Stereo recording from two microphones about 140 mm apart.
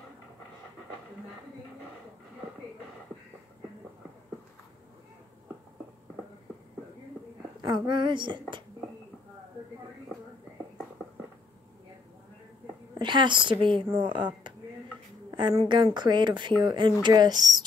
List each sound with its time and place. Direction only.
7.6 s speech: 30° right (ahead or behind)
13.0 s speech: 35° right (ahead or behind)